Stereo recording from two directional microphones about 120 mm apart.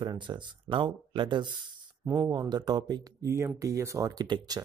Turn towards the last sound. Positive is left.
turn(degrees=-35)  # may be behind; listen again after turning